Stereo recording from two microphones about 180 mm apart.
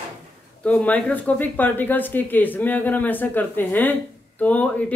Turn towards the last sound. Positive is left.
turn(degrees=10)  # may be behind; listen again after turning